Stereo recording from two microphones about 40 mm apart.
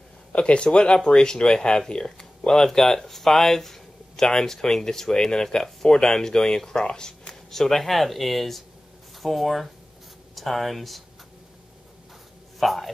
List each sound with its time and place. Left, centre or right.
0.3 s speech: left
7.5 s speech: centre
12.5 s a sound: centre